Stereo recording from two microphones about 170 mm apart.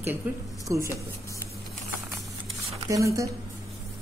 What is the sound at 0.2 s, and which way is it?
Speech, 10° right (ahead or behind).